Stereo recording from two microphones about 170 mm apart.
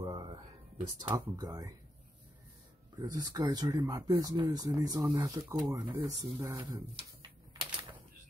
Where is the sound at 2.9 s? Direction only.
25° right (ahead or behind).